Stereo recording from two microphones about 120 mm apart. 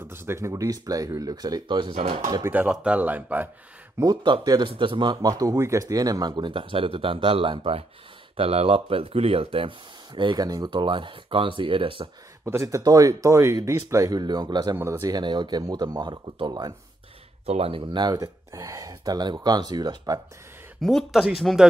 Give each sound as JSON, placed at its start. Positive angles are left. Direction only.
{"t": 0.1, "sound": "speech", "side_deg": -20}
{"t": 2.4, "sound": "speech", "side_deg": -15}
{"t": 4.0, "sound": "speech", "side_deg": -35}
{"t": 12.4, "sound": "speech", "side_deg": -25}
{"t": 14.8, "sound": "speech", "side_deg": -25}
{"t": 17.5, "sound": "speech", "side_deg": -55}
{"t": 17.9, "sound": "speech", "side_deg": -35}
{"t": 20.8, "sound": "speech", "side_deg": 0}